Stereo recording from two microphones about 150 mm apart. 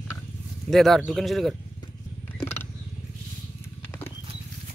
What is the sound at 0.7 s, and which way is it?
Speech, centre (ahead or behind).